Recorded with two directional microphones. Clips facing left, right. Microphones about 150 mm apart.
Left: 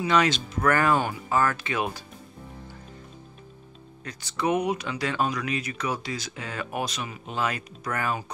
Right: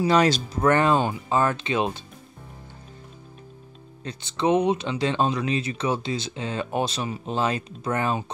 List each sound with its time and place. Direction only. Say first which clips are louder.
0.0 s speech: right 4 dB; 35° right (ahead or behind)
4.0 s speech: right 3 dB; 25° right (ahead or behind)